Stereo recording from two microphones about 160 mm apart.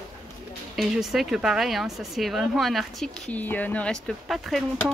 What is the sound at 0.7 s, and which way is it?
A woman's voice, centre (ahead or behind).